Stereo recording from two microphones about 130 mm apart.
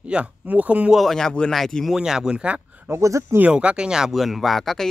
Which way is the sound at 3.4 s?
10° right (ahead or behind).